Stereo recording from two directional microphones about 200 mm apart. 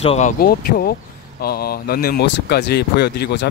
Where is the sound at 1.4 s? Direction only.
50° left (ahead or behind).